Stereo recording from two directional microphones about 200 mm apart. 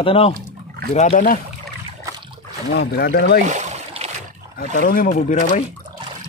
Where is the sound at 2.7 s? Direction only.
50° left (ahead or behind).